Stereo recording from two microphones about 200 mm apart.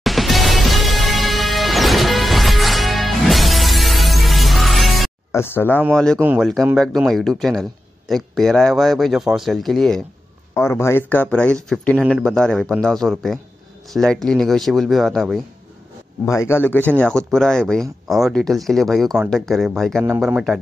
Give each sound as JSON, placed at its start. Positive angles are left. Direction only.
{"t": 0.0, "sound": "music", "side_deg": 0}
{"t": 5.3, "sound": "speech", "side_deg": 10}
{"t": 6.1, "sound": "speech", "side_deg": -10}
{"t": 6.8, "sound": "speech", "side_deg": 0}
{"t": 10.5, "sound": "speech", "side_deg": 15}
{"t": 16.3, "sound": "speech", "side_deg": 15}